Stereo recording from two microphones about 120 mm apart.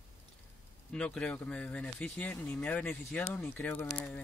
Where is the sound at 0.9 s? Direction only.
10° left (ahead or behind).